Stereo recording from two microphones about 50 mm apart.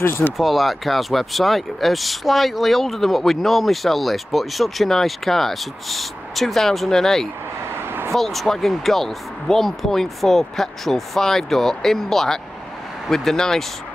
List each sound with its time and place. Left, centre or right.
0.0 s speech: left
0.4 s speech: centre